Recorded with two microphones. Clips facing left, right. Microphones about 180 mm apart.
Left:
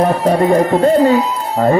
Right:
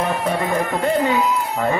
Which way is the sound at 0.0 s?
40° left (ahead or behind).